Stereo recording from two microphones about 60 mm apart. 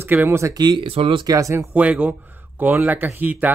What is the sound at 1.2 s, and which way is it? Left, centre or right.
Speech, right.